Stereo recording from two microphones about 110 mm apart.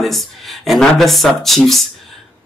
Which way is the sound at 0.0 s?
Centre (ahead or behind).